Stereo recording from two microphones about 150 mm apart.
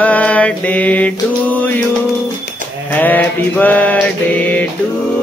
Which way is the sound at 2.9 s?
10° left (ahead or behind).